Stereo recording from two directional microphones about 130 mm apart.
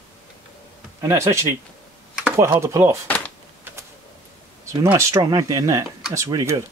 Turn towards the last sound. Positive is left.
turn(degrees=-20)  # may be behind; listen again after turning